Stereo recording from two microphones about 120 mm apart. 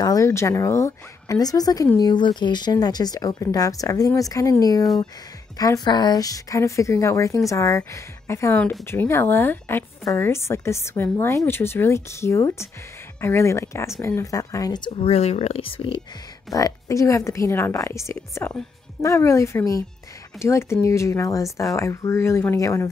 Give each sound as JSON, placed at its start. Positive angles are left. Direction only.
{"t": 0.0, "sound": "a woman's voice", "side_deg": 30}
{"t": 14.9, "sound": "speech", "side_deg": 55}
{"t": 16.5, "sound": "a woman's voice", "side_deg": 30}